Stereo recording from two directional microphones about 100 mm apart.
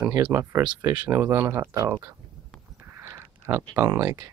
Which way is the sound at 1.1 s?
30° right (ahead or behind).